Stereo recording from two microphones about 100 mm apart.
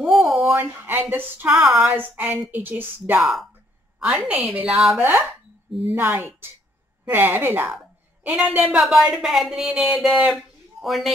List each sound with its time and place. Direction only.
0.0 s a sound: centre (ahead or behind)
0.6 s speech: 20° right (ahead or behind)
1.5 s speech: 5° right (ahead or behind)
1.9 s a woman's voice: 20° right (ahead or behind)
3.2 s speech: 5° right (ahead or behind)
4.3 s a woman's voice: 15° right (ahead or behind); by 11.1 s centre (ahead or behind)